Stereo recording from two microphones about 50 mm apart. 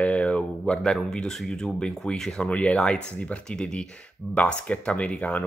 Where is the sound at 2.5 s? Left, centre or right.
Left.